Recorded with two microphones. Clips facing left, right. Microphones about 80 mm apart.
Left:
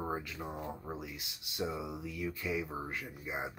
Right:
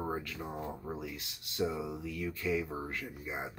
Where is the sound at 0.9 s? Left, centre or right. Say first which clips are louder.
Right 2 dB; centre.